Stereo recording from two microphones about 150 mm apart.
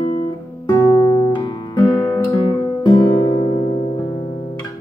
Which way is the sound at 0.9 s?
25° left (ahead or behind).